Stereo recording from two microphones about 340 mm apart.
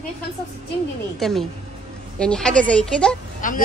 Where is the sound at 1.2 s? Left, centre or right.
Centre.